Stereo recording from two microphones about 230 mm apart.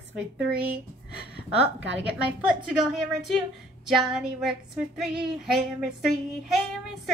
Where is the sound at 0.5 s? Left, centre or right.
Centre.